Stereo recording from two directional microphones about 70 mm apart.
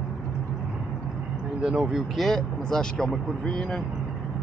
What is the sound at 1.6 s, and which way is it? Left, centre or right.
Speech, centre.